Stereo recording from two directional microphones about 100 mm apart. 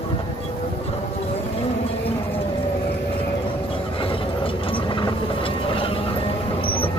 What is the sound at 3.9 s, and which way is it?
Vehicle, 60° left (ahead or behind).